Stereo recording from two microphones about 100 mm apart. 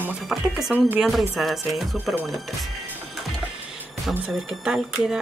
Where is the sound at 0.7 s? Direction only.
20° right (ahead or behind).